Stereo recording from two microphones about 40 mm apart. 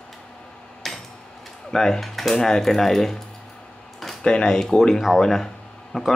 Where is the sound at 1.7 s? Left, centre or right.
Centre.